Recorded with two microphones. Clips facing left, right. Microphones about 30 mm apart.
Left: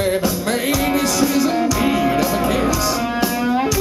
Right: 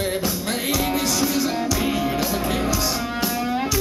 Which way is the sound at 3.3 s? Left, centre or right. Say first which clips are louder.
Left 5 dB; centre.